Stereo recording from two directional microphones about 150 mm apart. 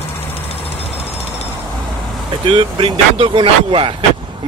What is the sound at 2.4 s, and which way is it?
Speech, 35° right (ahead or behind).